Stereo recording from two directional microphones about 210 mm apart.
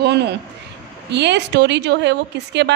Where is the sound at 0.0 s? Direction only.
55° right (ahead or behind).